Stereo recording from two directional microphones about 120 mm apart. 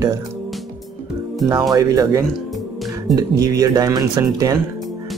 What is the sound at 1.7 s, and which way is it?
Speech, 30° right (ahead or behind).